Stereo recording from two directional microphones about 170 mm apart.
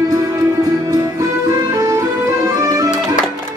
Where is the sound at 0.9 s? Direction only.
20° right (ahead or behind).